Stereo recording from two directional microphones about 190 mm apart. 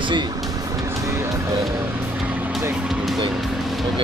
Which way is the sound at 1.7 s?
10° right (ahead or behind).